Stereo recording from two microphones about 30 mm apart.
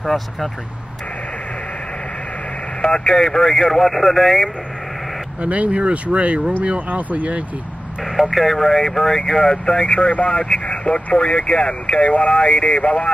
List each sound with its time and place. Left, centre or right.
0.0 s speech: centre
2.9 s speech: left; by 4.5 s centre
5.4 s speech: right
6.9 s speech: right
8.0 s speech: centre; by 13.1 s left